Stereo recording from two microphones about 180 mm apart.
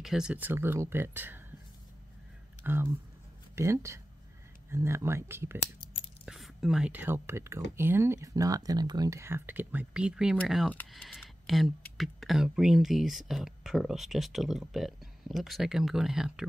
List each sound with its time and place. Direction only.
0.0 s speech: 5° right (ahead or behind)
2.6 s speech: 10° right (ahead or behind)
6.2 s speech: 5° right (ahead or behind)